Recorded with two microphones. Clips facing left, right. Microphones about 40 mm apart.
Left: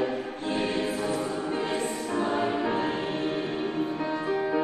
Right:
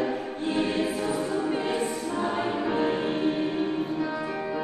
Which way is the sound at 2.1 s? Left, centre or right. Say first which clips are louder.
Left 4 dB; left.